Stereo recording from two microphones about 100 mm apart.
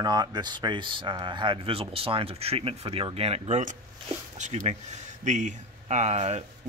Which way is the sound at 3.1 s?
90° right.